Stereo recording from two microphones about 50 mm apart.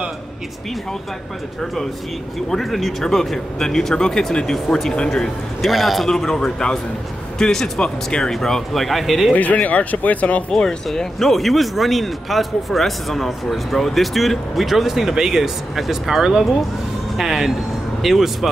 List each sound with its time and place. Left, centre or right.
2.5 s speech: centre
5.6 s speech: centre
9.3 s speech: left
10.5 s a woman's voice: centre